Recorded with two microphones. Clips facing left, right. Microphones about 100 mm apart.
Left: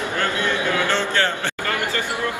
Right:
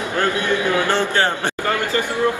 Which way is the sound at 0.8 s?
15° right (ahead or behind).